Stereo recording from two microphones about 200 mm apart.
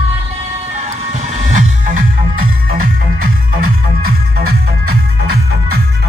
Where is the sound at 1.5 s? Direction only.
45° right (ahead or behind).